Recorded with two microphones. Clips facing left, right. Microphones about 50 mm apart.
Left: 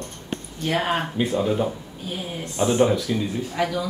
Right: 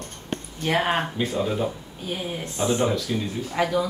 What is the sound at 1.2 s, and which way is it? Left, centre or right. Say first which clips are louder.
Speech: left 3 dB; centre.